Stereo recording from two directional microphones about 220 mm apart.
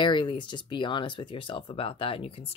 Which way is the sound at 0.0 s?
20° left (ahead or behind).